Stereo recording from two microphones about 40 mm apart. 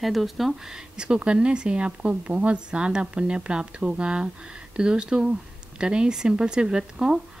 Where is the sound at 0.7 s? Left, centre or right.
Right.